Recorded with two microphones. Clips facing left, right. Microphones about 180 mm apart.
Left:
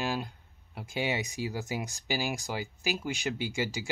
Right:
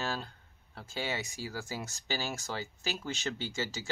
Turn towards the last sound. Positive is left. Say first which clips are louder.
# left 4 dB
turn(degrees=10)  # may be behind; listen again after turning